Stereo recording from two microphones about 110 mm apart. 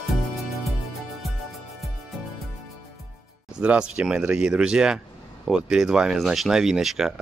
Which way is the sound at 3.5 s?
10° right (ahead or behind).